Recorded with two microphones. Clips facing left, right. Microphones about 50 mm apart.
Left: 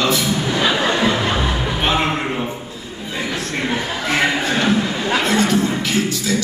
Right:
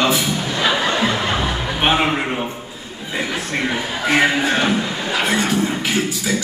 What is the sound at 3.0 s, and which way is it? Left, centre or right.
Chuckle, centre.